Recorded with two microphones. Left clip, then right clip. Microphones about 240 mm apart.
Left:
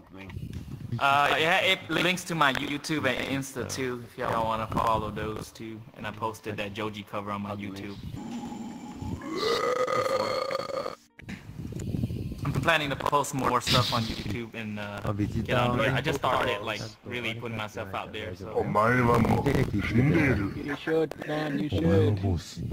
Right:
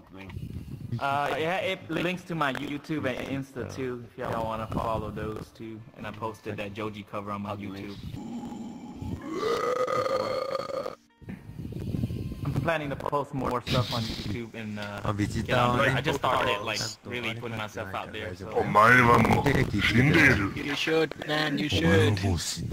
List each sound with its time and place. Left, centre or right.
0.9 s speech: left; by 7.4 s centre
9.3 s burping: centre
11.8 s a sound: centre
12.6 s speech: left
14.0 s speech: centre
14.3 s speech: centre
15.0 s speech: right
15.4 s speech: centre
18.6 s speech: right
19.4 s speech: right
19.8 s speech: right
22.3 s speech: right